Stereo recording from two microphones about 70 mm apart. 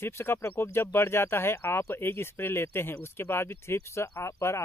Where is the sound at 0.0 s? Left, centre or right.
Left.